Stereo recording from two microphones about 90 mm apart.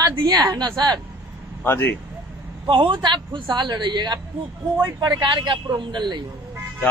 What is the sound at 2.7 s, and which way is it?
A man's voice, 70° right (ahead or behind).